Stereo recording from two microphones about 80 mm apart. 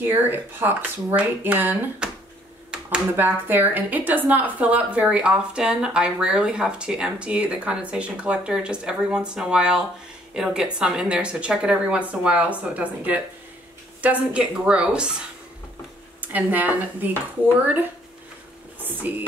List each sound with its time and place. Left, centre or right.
0.0 s speech: right
2.0 s a sound: centre
3.2 s a woman's voice: right
18.8 s speech: right